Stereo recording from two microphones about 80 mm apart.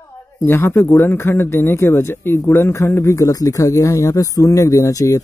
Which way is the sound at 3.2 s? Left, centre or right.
Left.